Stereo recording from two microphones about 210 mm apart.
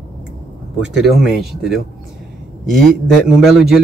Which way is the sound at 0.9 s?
Centre (ahead or behind).